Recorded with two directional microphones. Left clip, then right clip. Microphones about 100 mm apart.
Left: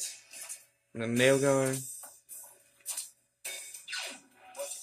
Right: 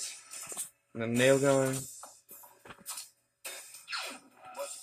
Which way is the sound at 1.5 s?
25° left (ahead or behind).